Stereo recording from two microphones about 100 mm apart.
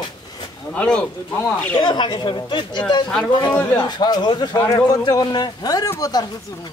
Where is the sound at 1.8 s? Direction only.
50° left (ahead or behind).